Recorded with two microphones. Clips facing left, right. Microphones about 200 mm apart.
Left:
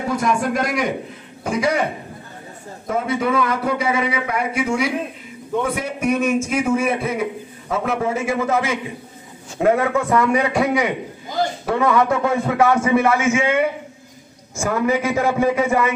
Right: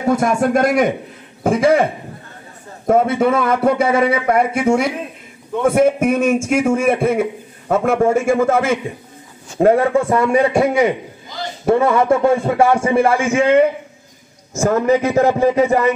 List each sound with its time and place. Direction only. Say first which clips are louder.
0.1 s a man's voice: right 6 dB; 50° right (ahead or behind)
2.9 s a man's voice: right 6 dB; 50° right (ahead or behind)
9.6 s a man's voice: right 4 dB; 30° right (ahead or behind)
14.5 s a man's voice: right 5 dB; 40° right (ahead or behind)